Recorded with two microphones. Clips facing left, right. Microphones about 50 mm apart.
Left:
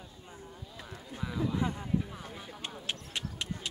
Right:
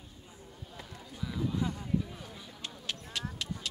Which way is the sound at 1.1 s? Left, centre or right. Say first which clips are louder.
Left 2 dB; left.